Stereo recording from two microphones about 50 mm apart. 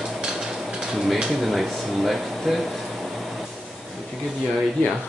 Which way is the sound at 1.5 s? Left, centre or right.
Centre.